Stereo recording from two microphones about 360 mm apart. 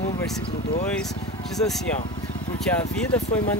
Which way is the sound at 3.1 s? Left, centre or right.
Centre.